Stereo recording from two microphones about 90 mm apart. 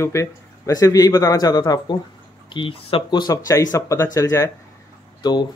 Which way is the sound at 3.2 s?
50° left (ahead or behind).